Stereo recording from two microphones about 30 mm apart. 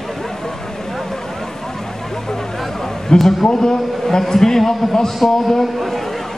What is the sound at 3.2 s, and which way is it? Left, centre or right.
Speech, centre.